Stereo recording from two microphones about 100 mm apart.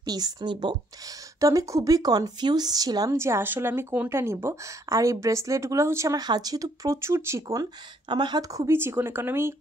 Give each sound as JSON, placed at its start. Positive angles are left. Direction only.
{"t": 0.0, "sound": "a woman's voice", "side_deg": -40}
{"t": 1.4, "sound": "a woman's voice", "side_deg": -30}
{"t": 3.2, "sound": "a woman's voice", "side_deg": -25}
{"t": 8.1, "sound": "a woman's voice", "side_deg": -50}
{"t": 8.5, "sound": "speech", "side_deg": -30}